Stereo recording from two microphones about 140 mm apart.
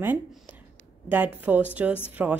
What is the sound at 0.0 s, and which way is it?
A woman's voice, 15° right (ahead or behind).